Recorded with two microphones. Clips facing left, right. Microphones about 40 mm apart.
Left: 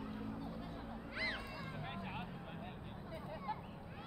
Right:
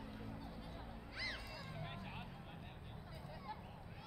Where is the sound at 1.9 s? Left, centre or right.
Centre.